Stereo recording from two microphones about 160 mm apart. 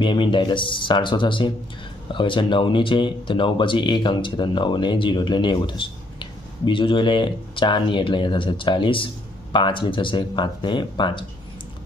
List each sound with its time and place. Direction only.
0.0 s speech: 30° left (ahead or behind)